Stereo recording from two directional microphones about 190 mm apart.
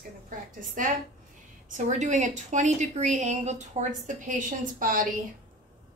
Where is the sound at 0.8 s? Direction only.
45° right (ahead or behind).